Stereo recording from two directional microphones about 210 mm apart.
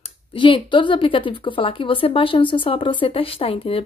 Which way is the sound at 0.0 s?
25° left (ahead or behind).